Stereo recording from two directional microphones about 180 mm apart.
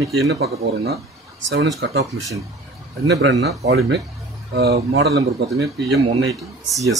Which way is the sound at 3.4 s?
65° right (ahead or behind).